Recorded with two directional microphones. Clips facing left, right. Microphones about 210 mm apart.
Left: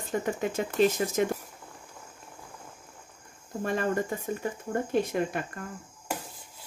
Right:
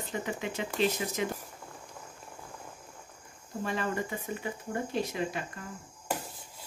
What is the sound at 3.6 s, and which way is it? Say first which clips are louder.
Speech: left 5 dB; 45° left (ahead or behind).